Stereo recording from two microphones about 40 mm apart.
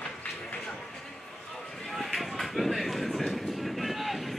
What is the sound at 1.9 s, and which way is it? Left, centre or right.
Train, centre.